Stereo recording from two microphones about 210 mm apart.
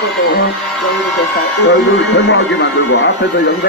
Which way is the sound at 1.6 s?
55° left (ahead or behind).